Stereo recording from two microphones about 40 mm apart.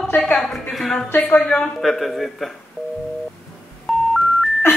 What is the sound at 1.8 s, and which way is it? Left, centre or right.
Speech, centre.